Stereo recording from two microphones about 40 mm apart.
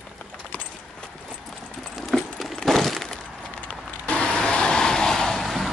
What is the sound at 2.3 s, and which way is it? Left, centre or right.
Breaking, centre.